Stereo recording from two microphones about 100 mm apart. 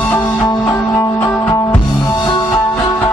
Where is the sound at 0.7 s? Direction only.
35° left (ahead or behind).